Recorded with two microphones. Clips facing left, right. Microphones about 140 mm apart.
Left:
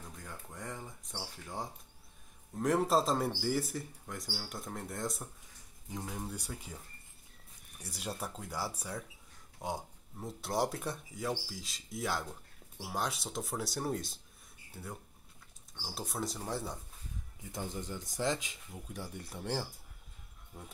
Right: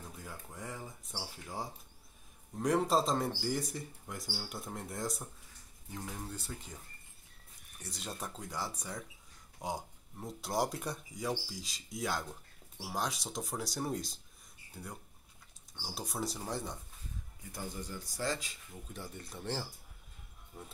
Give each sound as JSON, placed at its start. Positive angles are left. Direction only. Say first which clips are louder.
{"t": 0.2, "sound": "speech", "louder": "left 1 dB", "side_deg": -5}
{"t": 5.9, "sound": "speech", "louder": "left 2 dB", "side_deg": 15}
{"t": 7.8, "sound": "speech", "louder": "left 2 dB", "side_deg": 10}
{"t": 17.5, "sound": "speech", "louder": "left 3 dB", "side_deg": 20}